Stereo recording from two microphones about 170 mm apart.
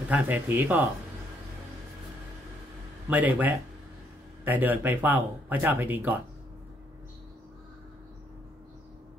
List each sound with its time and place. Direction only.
0.1 s speech: 10° right (ahead or behind)
3.1 s speech: 10° right (ahead or behind)